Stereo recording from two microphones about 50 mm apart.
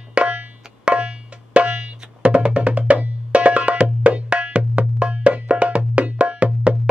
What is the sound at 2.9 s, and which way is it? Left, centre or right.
Music, right.